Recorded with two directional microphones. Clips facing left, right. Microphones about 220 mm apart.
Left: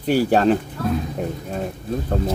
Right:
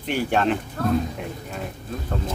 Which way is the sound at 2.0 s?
40° left (ahead or behind).